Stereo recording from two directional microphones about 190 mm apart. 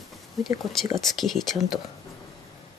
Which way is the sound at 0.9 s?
Centre (ahead or behind).